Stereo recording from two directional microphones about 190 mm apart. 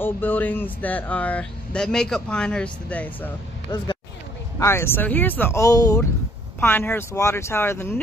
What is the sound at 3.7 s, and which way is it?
Speech, 20° left (ahead or behind).